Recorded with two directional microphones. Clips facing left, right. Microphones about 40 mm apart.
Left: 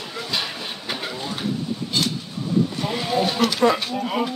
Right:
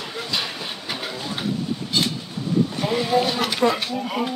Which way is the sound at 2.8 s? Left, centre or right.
Centre.